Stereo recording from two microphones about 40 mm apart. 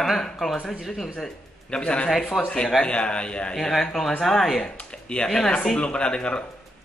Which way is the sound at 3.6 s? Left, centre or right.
Centre.